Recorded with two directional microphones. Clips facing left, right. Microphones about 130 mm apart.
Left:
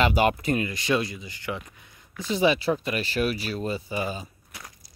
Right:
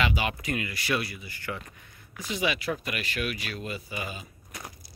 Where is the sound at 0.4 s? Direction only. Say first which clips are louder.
Left 6 dB; 30° left (ahead or behind).